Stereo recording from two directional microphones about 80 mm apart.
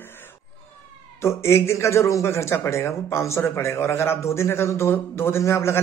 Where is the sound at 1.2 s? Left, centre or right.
Left.